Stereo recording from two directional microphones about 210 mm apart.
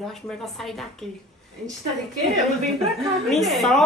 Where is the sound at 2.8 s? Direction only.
Centre (ahead or behind).